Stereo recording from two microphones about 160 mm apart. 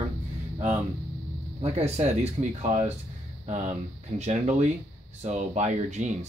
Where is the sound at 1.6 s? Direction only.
40° right (ahead or behind).